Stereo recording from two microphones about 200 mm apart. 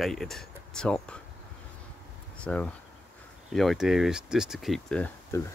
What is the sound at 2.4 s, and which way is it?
Speech, 5° left (ahead or behind).